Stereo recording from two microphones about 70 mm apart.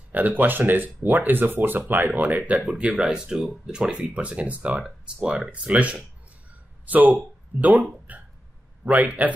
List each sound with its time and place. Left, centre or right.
0.1 s speech: right